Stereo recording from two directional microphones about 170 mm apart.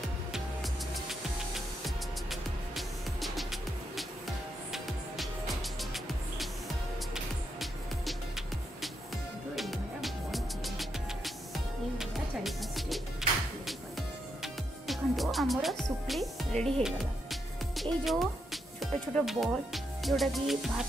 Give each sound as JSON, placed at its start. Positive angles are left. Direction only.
{"t": 2.7, "sound": "music", "side_deg": 0}
{"t": 4.7, "sound": "music", "side_deg": 0}
{"t": 7.6, "sound": "music", "side_deg": 0}
{"t": 14.4, "sound": "music", "side_deg": 0}
{"t": 18.0, "sound": "speech", "side_deg": 0}